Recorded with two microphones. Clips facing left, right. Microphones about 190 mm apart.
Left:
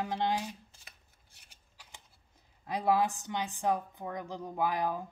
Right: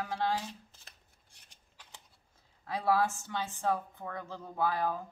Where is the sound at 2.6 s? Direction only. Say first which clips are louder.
Left 1 dB; 15° left (ahead or behind).